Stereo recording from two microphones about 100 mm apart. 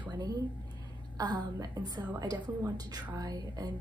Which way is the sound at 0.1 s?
40° right (ahead or behind).